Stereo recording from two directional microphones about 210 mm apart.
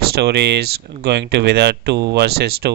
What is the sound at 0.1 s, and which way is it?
Speech, 50° right (ahead or behind).